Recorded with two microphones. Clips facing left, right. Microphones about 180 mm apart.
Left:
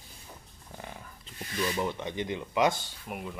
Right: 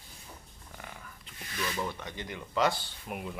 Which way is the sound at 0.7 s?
30° left (ahead or behind).